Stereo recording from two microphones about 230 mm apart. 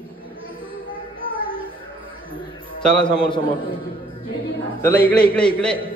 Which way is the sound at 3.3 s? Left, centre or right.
Left.